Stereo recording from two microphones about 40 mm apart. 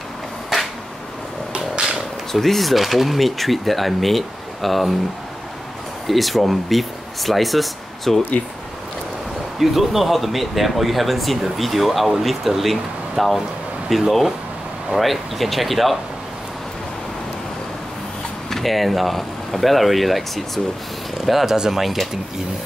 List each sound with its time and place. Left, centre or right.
0.5 s a sound: centre
2.3 s speech: centre
6.0 s speech: centre
9.6 s speech: centre
18.5 s speech: centre
21.8 s speech: centre